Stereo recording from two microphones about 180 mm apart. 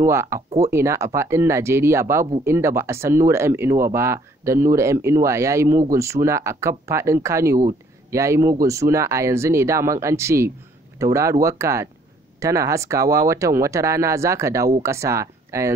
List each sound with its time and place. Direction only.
0.0 s speech: 15° right (ahead or behind)